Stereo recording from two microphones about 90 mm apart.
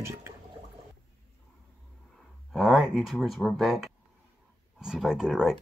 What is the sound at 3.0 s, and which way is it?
Speech, centre (ahead or behind).